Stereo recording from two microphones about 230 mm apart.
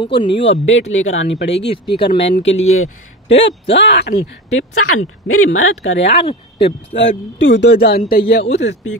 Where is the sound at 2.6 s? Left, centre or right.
Left.